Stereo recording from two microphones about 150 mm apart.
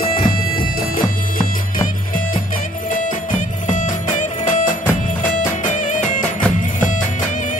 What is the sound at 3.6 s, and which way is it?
Music, 55° left (ahead or behind).